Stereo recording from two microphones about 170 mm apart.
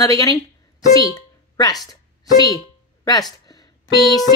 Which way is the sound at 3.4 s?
20° left (ahead or behind).